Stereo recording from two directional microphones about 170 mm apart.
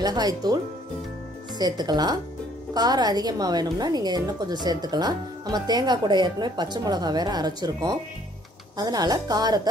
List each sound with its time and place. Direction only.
0.0 s speech: 20° right (ahead or behind)
1.6 s speech: 25° right (ahead or behind)